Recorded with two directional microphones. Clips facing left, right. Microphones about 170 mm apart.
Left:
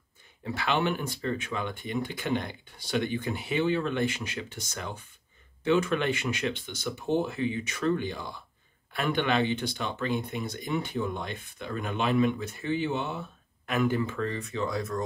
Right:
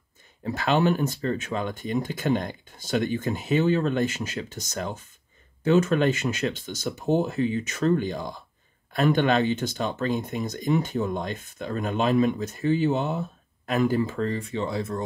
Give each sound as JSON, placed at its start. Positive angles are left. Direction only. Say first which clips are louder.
{"t": 0.4, "sound": "speech", "louder": "right 5 dB", "side_deg": -40}